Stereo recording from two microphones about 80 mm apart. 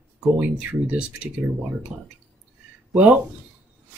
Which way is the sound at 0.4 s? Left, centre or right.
Centre.